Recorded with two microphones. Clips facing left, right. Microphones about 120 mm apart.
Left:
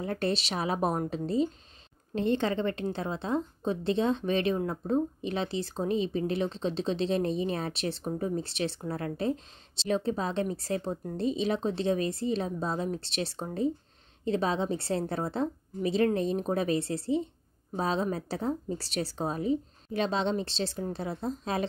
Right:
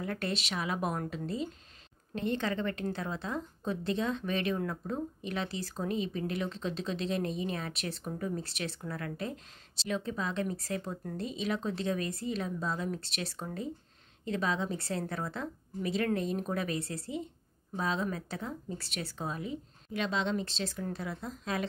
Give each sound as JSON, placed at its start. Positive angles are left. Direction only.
{"t": 0.0, "sound": "a woman's voice", "side_deg": 30}